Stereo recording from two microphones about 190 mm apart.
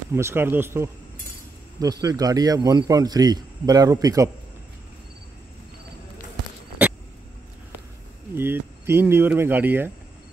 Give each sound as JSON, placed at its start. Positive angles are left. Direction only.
{"t": 0.1, "sound": "speech", "side_deg": -15}
{"t": 6.8, "sound": "a sound", "side_deg": -5}
{"t": 8.4, "sound": "speech", "side_deg": -10}